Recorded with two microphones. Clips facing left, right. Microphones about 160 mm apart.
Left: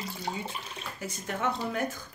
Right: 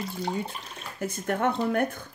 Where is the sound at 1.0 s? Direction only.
55° right (ahead or behind).